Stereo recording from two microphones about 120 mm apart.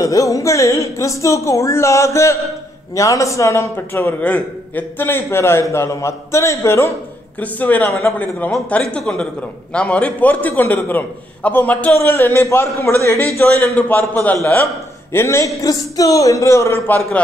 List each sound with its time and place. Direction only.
0.0 s a man's voice: 30° left (ahead or behind)